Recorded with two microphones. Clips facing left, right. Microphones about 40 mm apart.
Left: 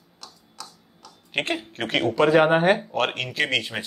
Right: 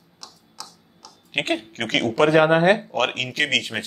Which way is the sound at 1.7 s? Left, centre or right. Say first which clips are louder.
Right 1 dB; right.